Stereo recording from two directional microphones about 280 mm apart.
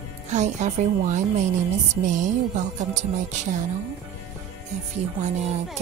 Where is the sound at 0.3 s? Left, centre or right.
Right.